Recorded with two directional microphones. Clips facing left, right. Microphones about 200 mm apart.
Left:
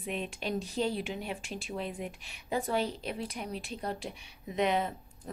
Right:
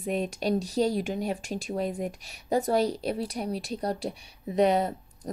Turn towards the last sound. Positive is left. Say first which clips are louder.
# right 6 dB
turn(degrees=-40)  # may be behind; listen again after turning